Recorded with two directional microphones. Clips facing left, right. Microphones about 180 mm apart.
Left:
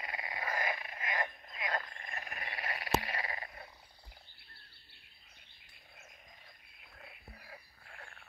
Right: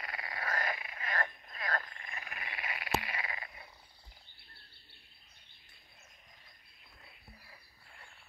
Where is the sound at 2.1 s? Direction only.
45° left (ahead or behind).